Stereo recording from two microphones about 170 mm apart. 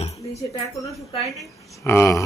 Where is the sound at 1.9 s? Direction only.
15° left (ahead or behind).